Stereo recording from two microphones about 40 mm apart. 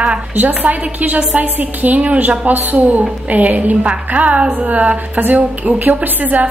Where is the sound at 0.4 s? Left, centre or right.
Right.